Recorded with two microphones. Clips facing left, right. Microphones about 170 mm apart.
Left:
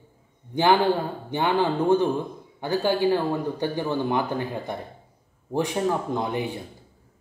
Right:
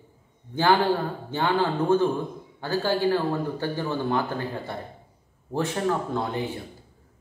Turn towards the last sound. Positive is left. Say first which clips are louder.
# left 1 dB
turn(degrees=15)  # may be behind; listen again after turning